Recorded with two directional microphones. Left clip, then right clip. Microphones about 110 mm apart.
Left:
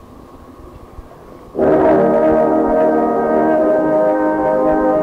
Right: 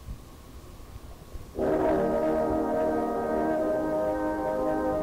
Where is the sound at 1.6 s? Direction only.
25° right (ahead or behind).